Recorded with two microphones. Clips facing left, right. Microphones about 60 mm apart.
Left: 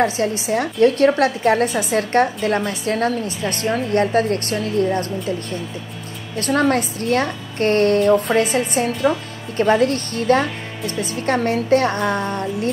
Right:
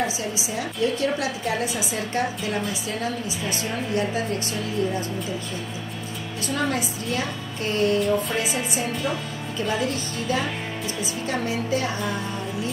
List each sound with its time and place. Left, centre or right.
0.0 s a woman's voice: left
6.3 s a woman's voice: left